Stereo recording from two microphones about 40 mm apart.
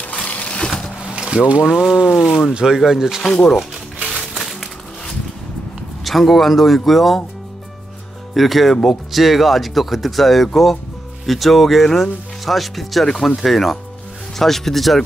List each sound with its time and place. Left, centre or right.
0.0 s a sound: left
1.0 s a sound: right
1.6 s speech: centre
4.0 s crushing: centre
4.4 s crushing: centre
6.0 s speech: centre
8.4 s speech: centre
13.0 s speech: centre
13.4 s speech: centre